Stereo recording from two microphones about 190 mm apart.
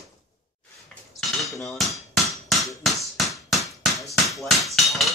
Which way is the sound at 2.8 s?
Centre (ahead or behind).